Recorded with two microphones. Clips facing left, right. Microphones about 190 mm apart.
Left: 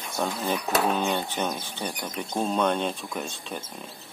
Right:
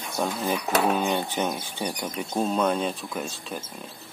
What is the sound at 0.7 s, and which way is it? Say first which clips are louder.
Speech: right 2 dB; 5° right (ahead or behind).